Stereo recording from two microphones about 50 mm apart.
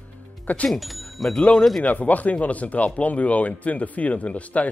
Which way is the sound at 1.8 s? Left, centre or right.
Left.